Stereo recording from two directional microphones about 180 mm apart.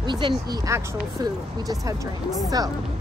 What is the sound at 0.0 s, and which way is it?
A woman's voice, 25° right (ahead or behind).